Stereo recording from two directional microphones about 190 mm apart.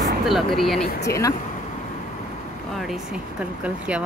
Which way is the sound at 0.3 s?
Centre (ahead or behind).